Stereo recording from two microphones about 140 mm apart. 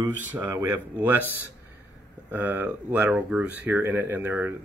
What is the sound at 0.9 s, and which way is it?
Speech, 15° right (ahead or behind).